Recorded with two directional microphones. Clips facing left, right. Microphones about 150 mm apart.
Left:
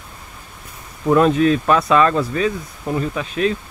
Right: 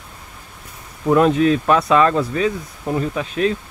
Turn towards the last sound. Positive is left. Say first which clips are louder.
# even
turn(degrees=-35)  # may be behind; listen again after turning